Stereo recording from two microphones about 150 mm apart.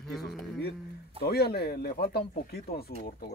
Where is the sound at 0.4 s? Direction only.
90° left.